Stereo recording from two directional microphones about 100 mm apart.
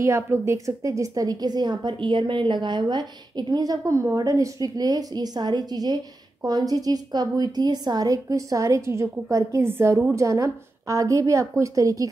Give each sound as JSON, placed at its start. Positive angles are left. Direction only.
{"t": 0.0, "sound": "a woman's voice", "side_deg": -30}